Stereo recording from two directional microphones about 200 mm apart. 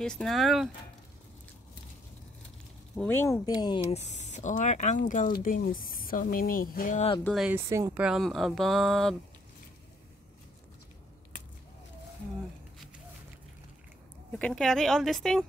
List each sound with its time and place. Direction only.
0.0 s speech: 5° left (ahead or behind)
3.0 s speech: 10° left (ahead or behind)
3.9 s speech: 35° left (ahead or behind)
7.2 s speech: centre (ahead or behind)
7.5 s speech: 10° right (ahead or behind)
14.4 s speech: centre (ahead or behind)